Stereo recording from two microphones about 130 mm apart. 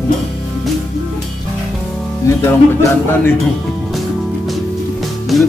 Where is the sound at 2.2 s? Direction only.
25° left (ahead or behind).